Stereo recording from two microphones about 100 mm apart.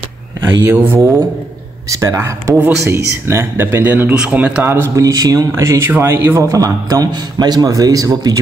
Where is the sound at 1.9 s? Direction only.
35° right (ahead or behind); by 4.7 s 10° right (ahead or behind).